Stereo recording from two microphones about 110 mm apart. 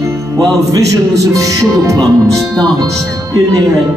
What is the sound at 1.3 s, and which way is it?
Music, 30° right (ahead or behind).